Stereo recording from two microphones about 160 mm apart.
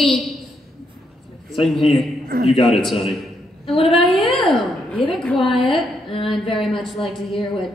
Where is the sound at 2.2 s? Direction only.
70° right (ahead or behind).